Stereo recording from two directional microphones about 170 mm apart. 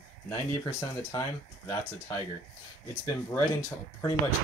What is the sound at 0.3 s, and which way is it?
Speech, 15° left (ahead or behind).